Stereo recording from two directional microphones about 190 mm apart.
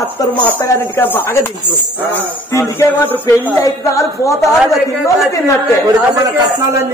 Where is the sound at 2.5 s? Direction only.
15° left (ahead or behind).